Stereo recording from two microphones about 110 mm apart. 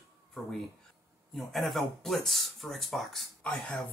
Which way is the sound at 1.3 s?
Centre (ahead or behind).